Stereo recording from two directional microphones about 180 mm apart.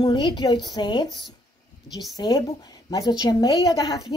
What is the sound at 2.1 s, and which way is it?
A woman's voice, 20° left (ahead or behind).